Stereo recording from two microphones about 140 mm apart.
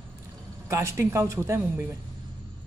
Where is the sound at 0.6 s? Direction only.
20° right (ahead or behind).